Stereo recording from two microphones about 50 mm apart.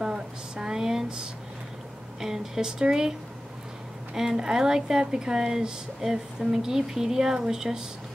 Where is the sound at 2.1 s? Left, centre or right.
Centre.